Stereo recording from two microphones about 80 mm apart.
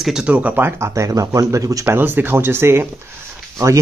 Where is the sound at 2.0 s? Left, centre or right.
Right.